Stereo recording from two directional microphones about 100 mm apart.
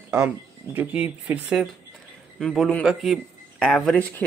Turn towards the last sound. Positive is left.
turn(degrees=5)  # may be behind; listen again after turning